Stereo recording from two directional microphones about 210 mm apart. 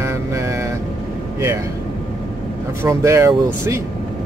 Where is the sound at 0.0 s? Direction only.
15° right (ahead or behind).